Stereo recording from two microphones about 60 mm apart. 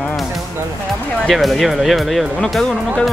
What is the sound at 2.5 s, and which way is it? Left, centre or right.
Music, centre.